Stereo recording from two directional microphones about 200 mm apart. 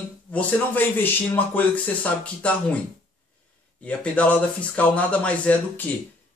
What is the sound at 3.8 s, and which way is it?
Speech, 5° left (ahead or behind).